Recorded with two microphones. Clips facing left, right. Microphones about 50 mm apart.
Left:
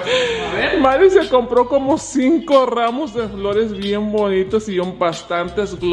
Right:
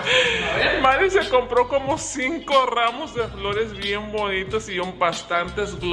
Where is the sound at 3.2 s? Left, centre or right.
Right.